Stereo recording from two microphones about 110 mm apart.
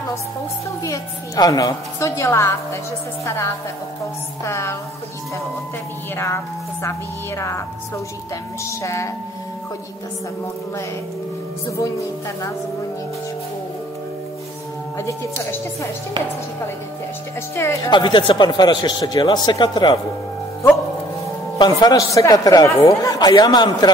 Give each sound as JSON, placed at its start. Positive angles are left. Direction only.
{"t": 0.8, "sound": "a woman's voice", "side_deg": 35}
{"t": 6.1, "sound": "a woman's voice", "side_deg": 25}
{"t": 8.8, "sound": "a woman's voice", "side_deg": 25}
{"t": 15.0, "sound": "a woman's voice", "side_deg": 25}
{"t": 17.8, "sound": "a man's voice", "side_deg": 45}
{"t": 21.5, "sound": "a man's voice", "side_deg": 35}